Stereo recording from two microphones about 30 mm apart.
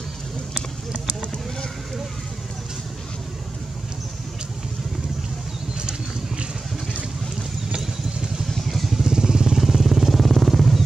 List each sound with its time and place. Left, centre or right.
0.9 s vehicle: left
5.8 s vehicle: right
8.6 s vehicle: centre
9.0 s vehicle: right
9.6 s vehicle: centre